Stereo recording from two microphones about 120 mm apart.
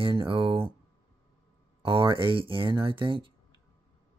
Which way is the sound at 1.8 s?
45° right (ahead or behind).